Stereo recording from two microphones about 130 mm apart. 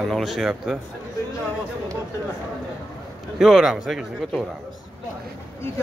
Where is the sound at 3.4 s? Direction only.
Centre (ahead or behind).